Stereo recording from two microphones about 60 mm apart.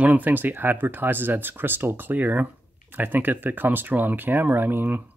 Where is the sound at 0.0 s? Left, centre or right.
Right.